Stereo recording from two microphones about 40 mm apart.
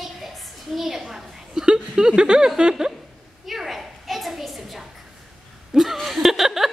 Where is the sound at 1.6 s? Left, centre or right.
Right.